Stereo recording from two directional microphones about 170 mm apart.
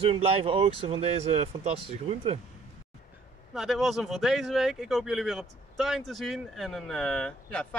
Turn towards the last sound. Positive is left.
turn(degrees=5)  # may be behind; listen again after turning